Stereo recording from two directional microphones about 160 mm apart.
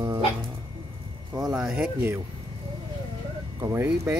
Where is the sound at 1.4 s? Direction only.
Centre (ahead or behind).